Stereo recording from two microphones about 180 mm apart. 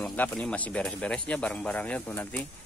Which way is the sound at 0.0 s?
5° left (ahead or behind).